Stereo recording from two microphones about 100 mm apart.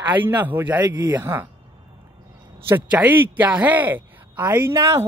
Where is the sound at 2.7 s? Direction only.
20° right (ahead or behind).